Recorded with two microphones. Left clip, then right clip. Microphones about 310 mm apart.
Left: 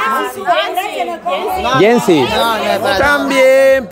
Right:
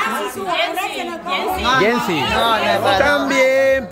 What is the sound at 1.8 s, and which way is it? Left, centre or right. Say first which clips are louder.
Speech: left 7 dB; left.